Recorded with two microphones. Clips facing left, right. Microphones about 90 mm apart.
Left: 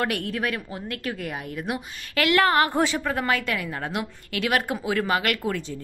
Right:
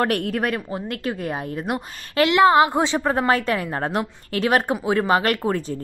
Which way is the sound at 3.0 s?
35° right (ahead or behind).